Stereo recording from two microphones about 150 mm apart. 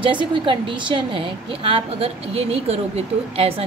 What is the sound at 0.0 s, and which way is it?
A woman's voice, 35° right (ahead or behind).